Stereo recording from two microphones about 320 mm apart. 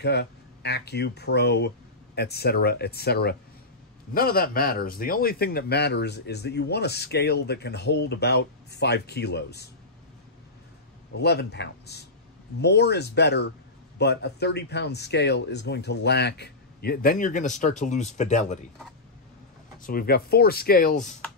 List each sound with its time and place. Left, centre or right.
0.0 s speech: left
11.1 s speech: left
19.8 s speech: left